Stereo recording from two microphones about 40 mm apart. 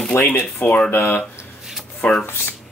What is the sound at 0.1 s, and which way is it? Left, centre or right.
Speech, left.